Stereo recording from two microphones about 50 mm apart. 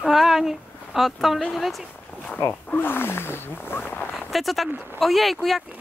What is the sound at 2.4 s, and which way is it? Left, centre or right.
Speech, left.